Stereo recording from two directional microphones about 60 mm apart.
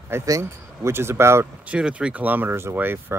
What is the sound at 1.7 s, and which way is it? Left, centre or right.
Speech, centre.